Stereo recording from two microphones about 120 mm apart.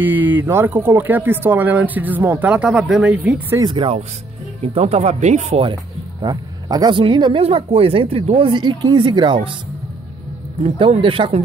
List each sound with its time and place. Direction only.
0.0 s speech: 15° right (ahead or behind)
3.6 s speech: 50° right (ahead or behind)
4.7 s speech: 60° right (ahead or behind)
6.2 s speech: 35° right (ahead or behind)
7.4 s speech: 55° right (ahead or behind)
10.6 s speech: 50° right (ahead or behind)